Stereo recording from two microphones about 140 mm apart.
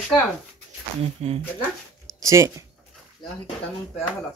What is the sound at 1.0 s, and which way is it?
Speech, 50° right (ahead or behind).